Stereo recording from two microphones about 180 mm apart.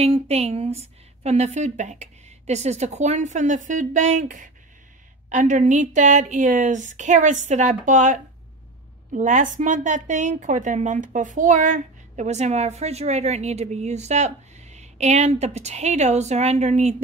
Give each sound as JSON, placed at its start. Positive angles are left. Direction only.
{"t": 0.0, "sound": "a woman's voice", "side_deg": -35}